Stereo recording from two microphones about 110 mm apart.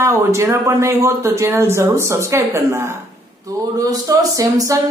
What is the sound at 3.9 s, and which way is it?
Speech, 35° right (ahead or behind).